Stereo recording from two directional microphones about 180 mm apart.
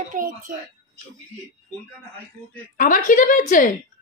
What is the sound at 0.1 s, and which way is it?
Speech, 50° right (ahead or behind).